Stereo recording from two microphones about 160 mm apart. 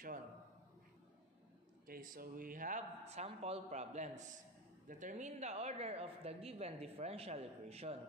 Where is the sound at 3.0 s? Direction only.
40° right (ahead or behind).